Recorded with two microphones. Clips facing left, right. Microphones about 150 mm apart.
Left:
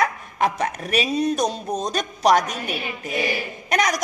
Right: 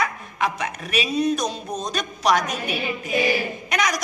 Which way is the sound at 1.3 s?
35° left (ahead or behind).